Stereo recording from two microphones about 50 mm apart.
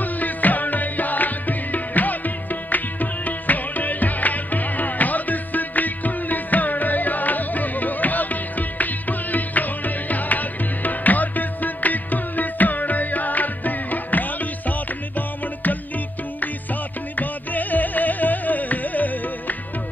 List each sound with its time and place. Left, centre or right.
0.0 s music: left
17.2 s music: left